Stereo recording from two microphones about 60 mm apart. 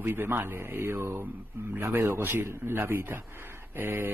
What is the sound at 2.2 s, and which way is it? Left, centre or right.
A man's voice, right.